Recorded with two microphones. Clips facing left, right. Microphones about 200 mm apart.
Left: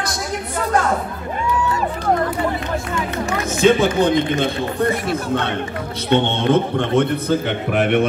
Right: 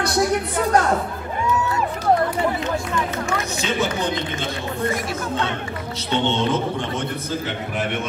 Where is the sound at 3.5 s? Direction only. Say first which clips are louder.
Left 9 dB; 50° left (ahead or behind).